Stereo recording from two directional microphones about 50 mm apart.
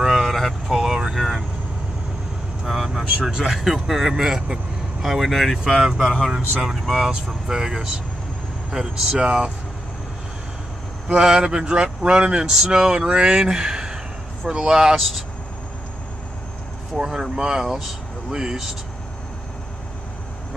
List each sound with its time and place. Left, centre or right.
0.0 s vehicle: centre
0.7 s vehicle: centre
2.6 s vehicle: centre
3.3 s speech: centre
11.1 s speech: centre
15.0 s speech: centre
17.0 s speech: centre